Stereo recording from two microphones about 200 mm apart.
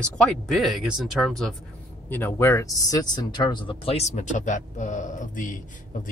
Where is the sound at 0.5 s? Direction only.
Centre (ahead or behind).